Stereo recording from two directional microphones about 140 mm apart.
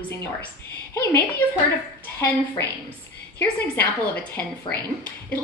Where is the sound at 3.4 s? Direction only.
15° left (ahead or behind).